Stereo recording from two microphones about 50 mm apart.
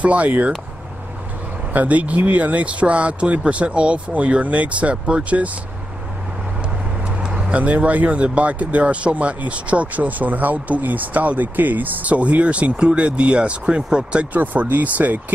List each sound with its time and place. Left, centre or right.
0.0 s speech: right
1.7 s speech: right
7.1 s speech: right
14.3 s speech: right